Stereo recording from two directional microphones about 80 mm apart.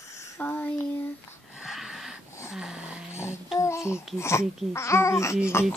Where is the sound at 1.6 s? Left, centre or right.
Centre.